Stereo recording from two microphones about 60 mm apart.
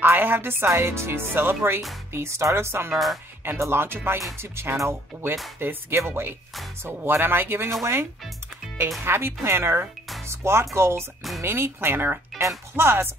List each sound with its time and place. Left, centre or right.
0.0 s speech: right
2.1 s speech: right
2.9 s speech: centre
3.5 s speech: right